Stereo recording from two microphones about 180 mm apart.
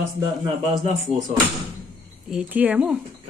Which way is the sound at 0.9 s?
45° right (ahead or behind).